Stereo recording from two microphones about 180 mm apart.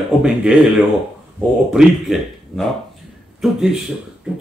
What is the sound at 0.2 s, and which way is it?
Speech, 5° right (ahead or behind).